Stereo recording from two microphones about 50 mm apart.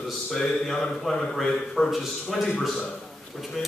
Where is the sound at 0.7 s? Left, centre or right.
Centre.